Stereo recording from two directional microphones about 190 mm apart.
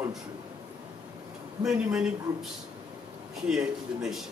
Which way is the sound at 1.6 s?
5° right (ahead or behind).